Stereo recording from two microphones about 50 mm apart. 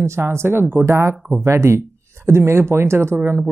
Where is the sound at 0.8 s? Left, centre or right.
Right.